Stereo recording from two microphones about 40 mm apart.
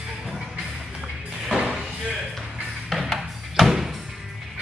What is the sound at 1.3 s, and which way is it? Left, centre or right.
Music, centre.